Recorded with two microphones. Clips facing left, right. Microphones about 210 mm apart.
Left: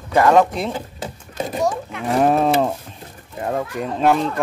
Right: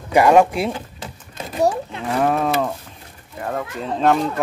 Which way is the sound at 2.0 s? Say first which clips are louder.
Left 3 dB; 30° left (ahead or behind).